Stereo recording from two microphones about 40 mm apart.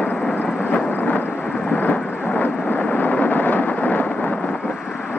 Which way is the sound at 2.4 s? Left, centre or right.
Left.